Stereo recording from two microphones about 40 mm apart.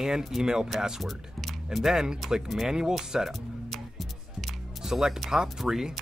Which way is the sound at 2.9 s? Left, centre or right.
Centre.